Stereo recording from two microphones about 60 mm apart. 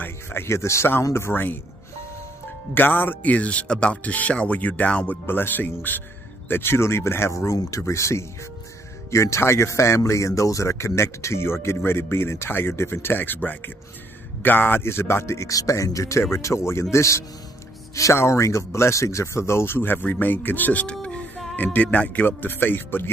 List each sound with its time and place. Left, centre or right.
0.0 s a sound: left
1.1 s a man's voice: left
2.7 s speech: left
5.2 s a man's voice: left
15.5 s speech: left
20.9 s music: centre
21.7 s a man's voice: left